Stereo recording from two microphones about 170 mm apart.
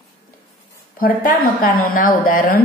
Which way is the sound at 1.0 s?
55° left (ahead or behind).